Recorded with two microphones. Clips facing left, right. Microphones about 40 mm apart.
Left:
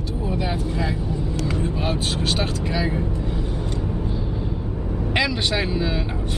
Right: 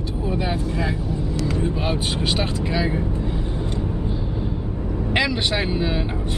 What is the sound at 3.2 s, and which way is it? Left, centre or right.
Vehicle, centre.